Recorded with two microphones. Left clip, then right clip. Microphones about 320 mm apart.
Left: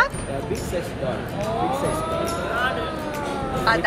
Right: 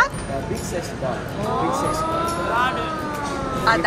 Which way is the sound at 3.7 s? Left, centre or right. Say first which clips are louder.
Right 2 dB; centre.